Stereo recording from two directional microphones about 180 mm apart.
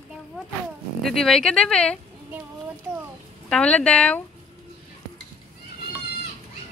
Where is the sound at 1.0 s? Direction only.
Centre (ahead or behind).